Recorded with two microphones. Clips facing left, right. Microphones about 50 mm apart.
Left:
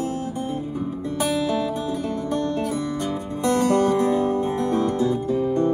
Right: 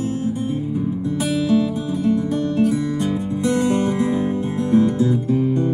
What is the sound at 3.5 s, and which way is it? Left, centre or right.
Music, right.